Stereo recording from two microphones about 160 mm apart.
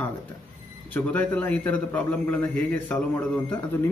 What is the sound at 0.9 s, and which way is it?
A man's voice, 10° left (ahead or behind).